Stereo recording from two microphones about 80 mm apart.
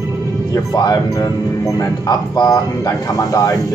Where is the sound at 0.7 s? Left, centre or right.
Left.